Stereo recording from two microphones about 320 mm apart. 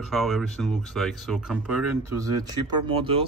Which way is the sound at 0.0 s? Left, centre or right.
Centre.